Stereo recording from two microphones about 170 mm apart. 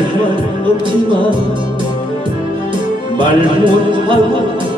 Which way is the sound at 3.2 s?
30° right (ahead or behind).